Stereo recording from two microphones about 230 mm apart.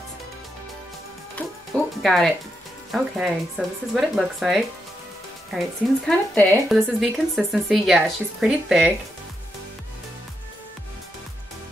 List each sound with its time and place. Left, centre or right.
1.4 s music: centre
2.0 s a woman's voice: centre